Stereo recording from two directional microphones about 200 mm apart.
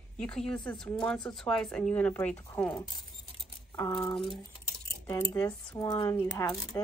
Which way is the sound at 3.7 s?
15° left (ahead or behind).